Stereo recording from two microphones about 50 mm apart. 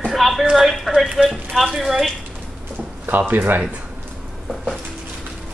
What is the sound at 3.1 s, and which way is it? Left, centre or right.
Speech, right.